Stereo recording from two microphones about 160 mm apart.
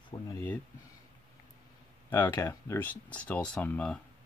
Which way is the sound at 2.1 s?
15° left (ahead or behind).